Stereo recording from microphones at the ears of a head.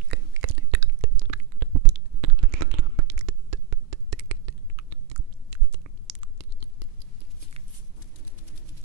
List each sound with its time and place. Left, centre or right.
0.1 s whispering: right